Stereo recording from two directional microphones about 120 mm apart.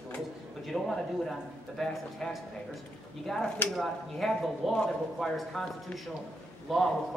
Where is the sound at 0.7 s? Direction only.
Centre (ahead or behind).